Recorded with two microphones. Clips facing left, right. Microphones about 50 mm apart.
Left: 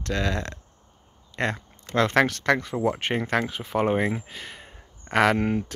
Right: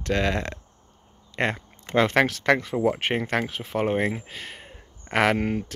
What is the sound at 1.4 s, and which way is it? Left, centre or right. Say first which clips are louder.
Speech: right 1 dB; centre.